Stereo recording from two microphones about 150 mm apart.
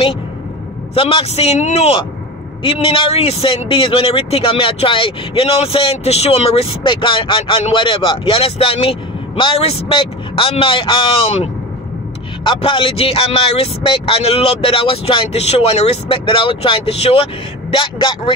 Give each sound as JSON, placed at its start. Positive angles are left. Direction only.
{"t": 0.9, "sound": "a man's voice", "side_deg": 40}
{"t": 12.4, "sound": "speech", "side_deg": 35}